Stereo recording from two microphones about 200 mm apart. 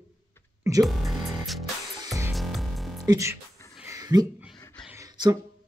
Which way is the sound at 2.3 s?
Centre (ahead or behind).